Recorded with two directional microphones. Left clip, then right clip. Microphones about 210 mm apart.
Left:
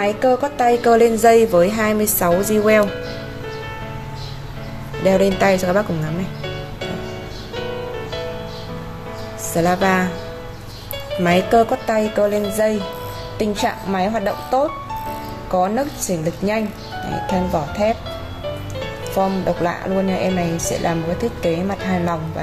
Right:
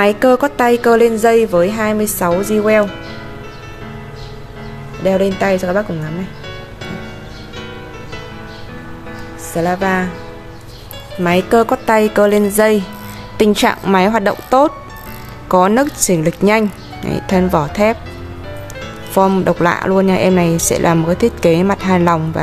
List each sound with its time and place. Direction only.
0.0 s a woman's voice: 30° right (ahead or behind); by 2.9 s 10° right (ahead or behind)
5.0 s a woman's voice: 10° right (ahead or behind)
9.5 s a woman's voice: 5° right (ahead or behind)
11.1 s speech: 15° right (ahead or behind)
11.8 s speech: 35° right (ahead or behind)
19.1 s speech: 40° right (ahead or behind)